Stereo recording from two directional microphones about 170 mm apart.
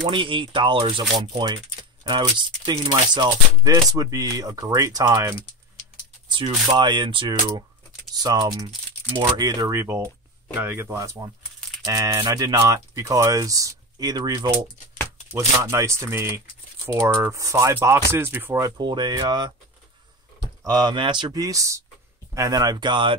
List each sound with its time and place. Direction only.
0.1 s speech: 30° right (ahead or behind)
15.6 s speech: 15° right (ahead or behind)
20.6 s speech: 25° right (ahead or behind)